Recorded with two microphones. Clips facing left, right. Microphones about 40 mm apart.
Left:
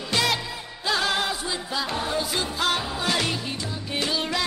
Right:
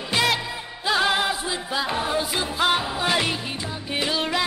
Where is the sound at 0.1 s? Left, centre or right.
Centre.